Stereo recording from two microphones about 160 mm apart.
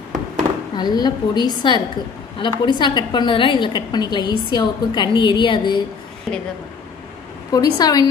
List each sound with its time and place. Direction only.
0.7 s a woman's voice: 25° left (ahead or behind)
6.3 s a woman's voice: centre (ahead or behind)
7.5 s a woman's voice: 25° left (ahead or behind)